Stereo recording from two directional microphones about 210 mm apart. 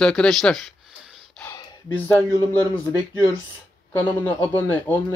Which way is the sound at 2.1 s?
15° left (ahead or behind).